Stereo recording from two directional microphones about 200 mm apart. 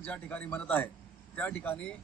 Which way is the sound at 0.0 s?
5° left (ahead or behind).